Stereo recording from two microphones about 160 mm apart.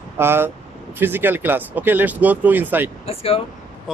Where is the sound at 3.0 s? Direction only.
35° left (ahead or behind).